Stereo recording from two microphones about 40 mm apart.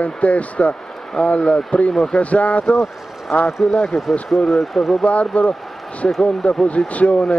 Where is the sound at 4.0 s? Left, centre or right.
Centre.